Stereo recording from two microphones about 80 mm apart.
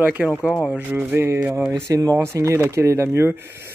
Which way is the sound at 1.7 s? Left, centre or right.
Right.